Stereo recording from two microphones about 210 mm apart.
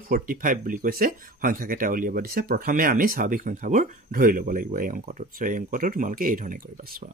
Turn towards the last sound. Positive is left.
turn(degrees=-40)  # may be behind; listen again after turning